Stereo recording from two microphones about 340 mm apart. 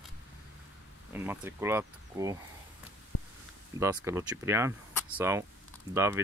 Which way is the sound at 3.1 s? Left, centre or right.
Left.